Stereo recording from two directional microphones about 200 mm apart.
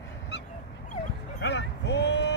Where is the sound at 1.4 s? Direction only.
60° left (ahead or behind).